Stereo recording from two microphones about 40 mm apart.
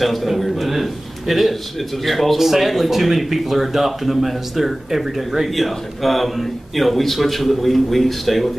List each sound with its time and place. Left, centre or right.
0.0 s a man's voice: centre